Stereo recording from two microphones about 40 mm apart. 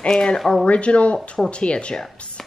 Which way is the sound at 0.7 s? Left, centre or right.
Left.